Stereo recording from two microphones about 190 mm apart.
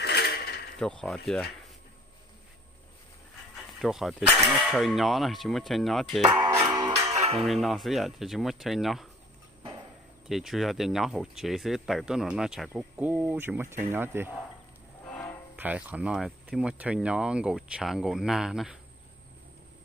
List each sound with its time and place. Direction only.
0.0 s mechanisms: 60° left (ahead or behind)
0.7 s speech: 5° left (ahead or behind)
3.8 s speech: centre (ahead or behind)
6.6 s music: 20° right (ahead or behind)
7.3 s speech: centre (ahead or behind)
10.2 s speech: centre (ahead or behind)
15.5 s speech: 10° right (ahead or behind)